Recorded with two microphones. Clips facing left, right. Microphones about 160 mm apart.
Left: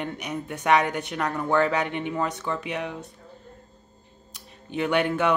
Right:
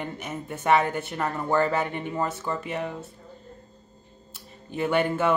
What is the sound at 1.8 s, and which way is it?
Speech, 65° left (ahead or behind).